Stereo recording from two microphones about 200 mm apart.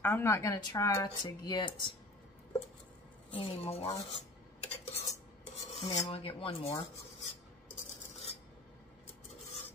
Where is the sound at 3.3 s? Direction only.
30° left (ahead or behind).